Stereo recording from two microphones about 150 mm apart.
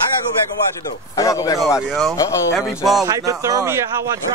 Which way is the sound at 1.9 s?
Centre (ahead or behind).